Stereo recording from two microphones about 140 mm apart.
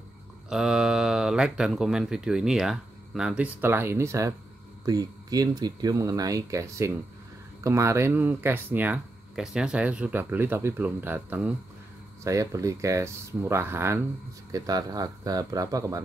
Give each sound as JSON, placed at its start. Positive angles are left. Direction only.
{"t": 0.5, "sound": "speech", "side_deg": -5}